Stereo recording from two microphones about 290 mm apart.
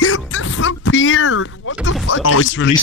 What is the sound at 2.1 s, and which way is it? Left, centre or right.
Speech, left.